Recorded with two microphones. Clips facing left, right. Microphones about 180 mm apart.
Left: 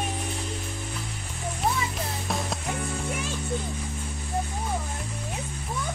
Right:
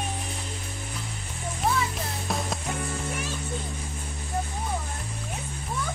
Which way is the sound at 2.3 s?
Centre (ahead or behind).